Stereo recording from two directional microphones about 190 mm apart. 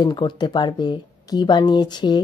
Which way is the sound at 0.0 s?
25° left (ahead or behind).